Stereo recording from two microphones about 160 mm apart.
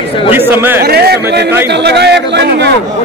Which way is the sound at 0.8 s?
80° right.